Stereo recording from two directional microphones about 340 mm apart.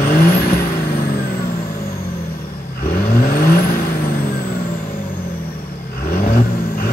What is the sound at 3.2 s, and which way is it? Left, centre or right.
Vehicle, left.